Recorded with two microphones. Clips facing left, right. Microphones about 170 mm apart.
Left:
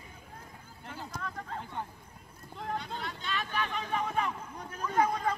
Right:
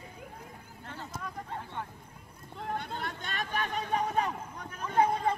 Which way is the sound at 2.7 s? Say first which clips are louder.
Right 2 dB; 50° right (ahead or behind).